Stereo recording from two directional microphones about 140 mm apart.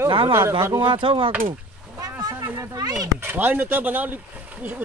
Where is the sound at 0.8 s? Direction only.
35° right (ahead or behind).